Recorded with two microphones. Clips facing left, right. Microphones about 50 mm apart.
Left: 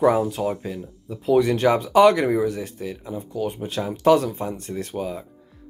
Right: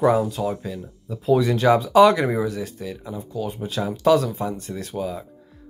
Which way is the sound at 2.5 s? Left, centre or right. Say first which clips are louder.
Left 1 dB; left.